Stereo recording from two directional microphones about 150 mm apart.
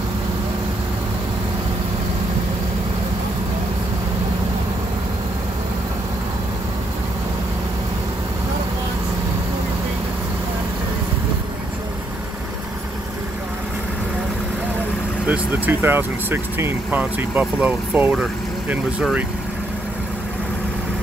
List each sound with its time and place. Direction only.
15.2 s speech: 10° right (ahead or behind)